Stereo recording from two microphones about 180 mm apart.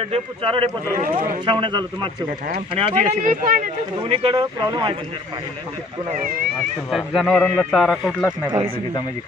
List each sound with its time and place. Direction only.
0.0 s speech: 35° right (ahead or behind)
0.9 s speech: 50° right (ahead or behind)
1.4 s speech: 25° right (ahead or behind); by 3.6 s 45° right (ahead or behind)
4.1 s speech: 30° right (ahead or behind)
6.0 s speech: 45° right (ahead or behind)
6.9 s a man's voice: centre (ahead or behind)
8.5 s speech: 25° right (ahead or behind)